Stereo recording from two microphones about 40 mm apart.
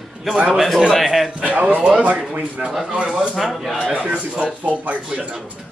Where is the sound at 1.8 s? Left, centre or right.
Right.